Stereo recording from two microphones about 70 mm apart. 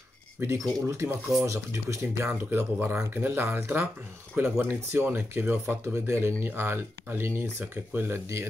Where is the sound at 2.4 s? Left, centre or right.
Right.